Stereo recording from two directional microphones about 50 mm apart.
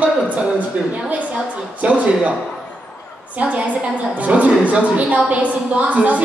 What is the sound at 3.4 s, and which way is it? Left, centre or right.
A woman's voice, right.